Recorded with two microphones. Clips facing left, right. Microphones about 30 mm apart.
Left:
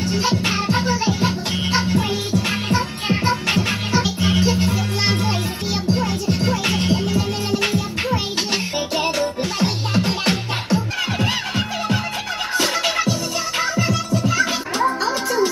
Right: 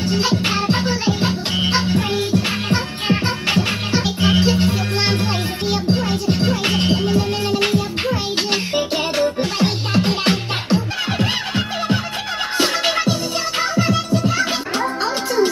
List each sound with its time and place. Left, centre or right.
0.0 s music: right
12.8 s music: right
13.6 s music: right